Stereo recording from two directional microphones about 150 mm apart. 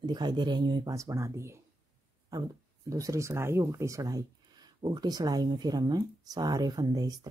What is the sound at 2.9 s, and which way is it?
Speech, 20° right (ahead or behind).